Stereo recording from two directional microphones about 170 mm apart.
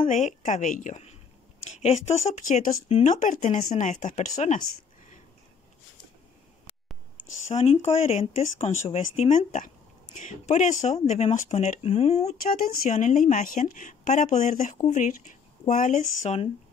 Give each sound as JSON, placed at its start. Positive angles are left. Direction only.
{"t": 0.1, "sound": "a woman's voice", "side_deg": 45}
{"t": 7.5, "sound": "speech", "side_deg": 40}
{"t": 12.4, "sound": "a woman's voice", "side_deg": 60}